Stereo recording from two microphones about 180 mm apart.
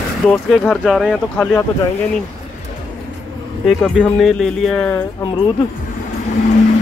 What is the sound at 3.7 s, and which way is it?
Speech, centre (ahead or behind).